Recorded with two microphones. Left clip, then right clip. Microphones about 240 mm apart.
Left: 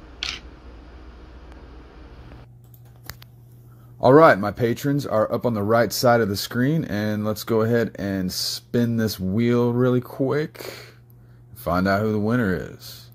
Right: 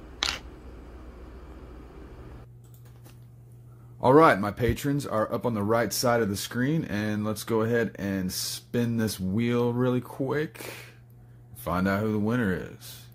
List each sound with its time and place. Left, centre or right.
4.0 s speech: centre